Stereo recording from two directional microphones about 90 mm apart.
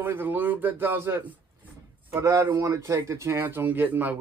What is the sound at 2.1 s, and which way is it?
Speech, 35° right (ahead or behind).